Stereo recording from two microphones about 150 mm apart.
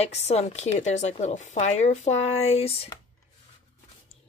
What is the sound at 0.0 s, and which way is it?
Speech, 45° left (ahead or behind).